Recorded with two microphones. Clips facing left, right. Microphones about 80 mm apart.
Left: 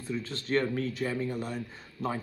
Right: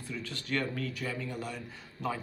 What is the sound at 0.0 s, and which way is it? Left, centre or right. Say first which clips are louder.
Speech: left 5 dB; left.